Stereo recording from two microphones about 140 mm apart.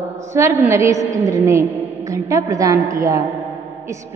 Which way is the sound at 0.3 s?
20° right (ahead or behind).